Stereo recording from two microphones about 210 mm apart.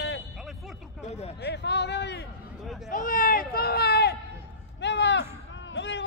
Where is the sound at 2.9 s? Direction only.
40° left (ahead or behind).